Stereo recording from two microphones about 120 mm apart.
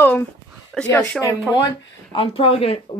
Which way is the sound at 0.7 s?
Centre (ahead or behind).